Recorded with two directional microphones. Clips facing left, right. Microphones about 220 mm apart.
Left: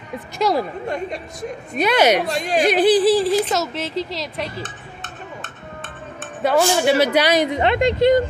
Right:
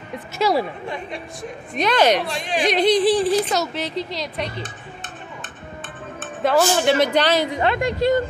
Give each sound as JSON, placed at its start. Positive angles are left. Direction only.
{"t": 0.4, "sound": "a woman's voice", "side_deg": 0}
{"t": 0.8, "sound": "speech", "side_deg": 45}
{"t": 1.8, "sound": "a woman's voice", "side_deg": 10}
{"t": 2.2, "sound": "speech", "side_deg": 40}
{"t": 2.7, "sound": "a woman's voice", "side_deg": 5}
{"t": 6.1, "sound": "a woman's voice", "side_deg": 0}